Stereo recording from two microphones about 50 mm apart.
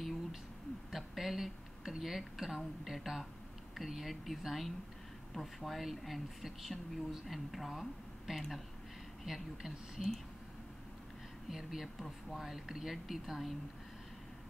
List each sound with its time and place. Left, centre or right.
0.9 s a sound: centre
3.7 s speech: centre
9.2 s speech: centre
11.5 s speech: centre